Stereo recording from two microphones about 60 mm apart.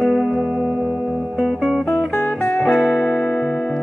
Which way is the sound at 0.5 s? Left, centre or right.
Left.